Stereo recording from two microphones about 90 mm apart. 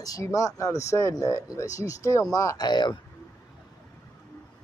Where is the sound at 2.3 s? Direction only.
45° left (ahead or behind).